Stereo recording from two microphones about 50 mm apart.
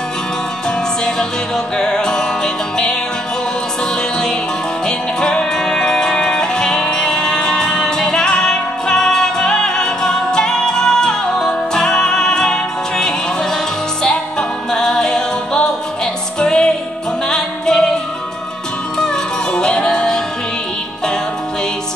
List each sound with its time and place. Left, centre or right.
1.8 s music: centre
4.8 s music: centre
14.7 s music: centre
19.5 s music: centre